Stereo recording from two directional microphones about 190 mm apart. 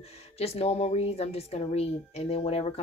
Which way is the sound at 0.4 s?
30° left (ahead or behind).